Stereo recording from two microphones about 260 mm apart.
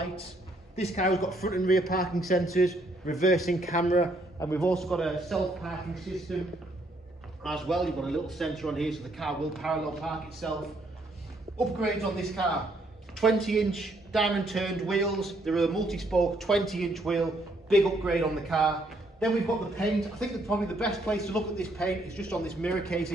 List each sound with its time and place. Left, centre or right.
0.7 s a woman's voice: left
1.4 s a man's voice: left
2.0 s speech: centre
7.4 s speech: centre
11.6 s a man's voice: centre